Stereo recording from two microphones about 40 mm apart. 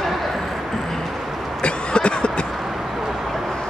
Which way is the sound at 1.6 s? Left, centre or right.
Left.